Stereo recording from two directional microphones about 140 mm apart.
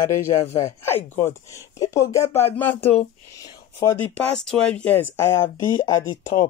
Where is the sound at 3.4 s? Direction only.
25° left (ahead or behind).